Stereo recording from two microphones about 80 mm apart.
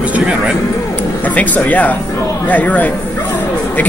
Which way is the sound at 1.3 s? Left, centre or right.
Centre.